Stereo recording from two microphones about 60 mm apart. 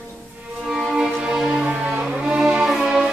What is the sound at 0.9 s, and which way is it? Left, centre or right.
Music, centre.